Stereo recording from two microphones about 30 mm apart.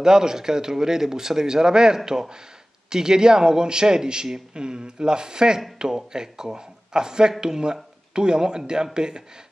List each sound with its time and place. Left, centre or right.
0.0 s speech: right